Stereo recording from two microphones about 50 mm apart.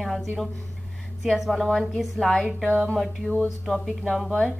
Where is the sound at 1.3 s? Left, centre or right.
Centre.